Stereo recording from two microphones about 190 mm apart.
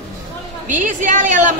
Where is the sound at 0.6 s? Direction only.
40° right (ahead or behind).